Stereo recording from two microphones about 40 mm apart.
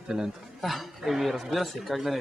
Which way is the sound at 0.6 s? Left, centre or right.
Centre.